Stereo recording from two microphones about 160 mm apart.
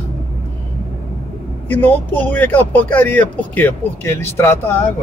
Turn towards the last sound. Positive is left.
turn(degrees=15)  # may be behind; listen again after turning